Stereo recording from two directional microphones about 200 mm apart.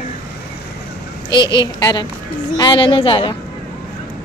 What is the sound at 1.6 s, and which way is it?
A woman's voice, 20° left (ahead or behind).